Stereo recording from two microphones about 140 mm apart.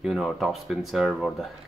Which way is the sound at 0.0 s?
5° right (ahead or behind).